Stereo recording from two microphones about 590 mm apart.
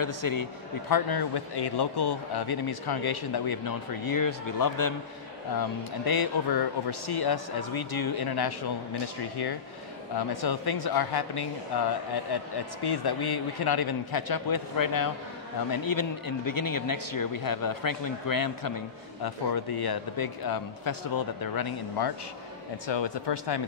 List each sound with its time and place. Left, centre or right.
0.0 s a man's voice: left
10.1 s a man's voice: left
12.8 s a man's voice: left